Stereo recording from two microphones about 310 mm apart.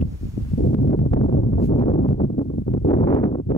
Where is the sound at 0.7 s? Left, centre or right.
Centre.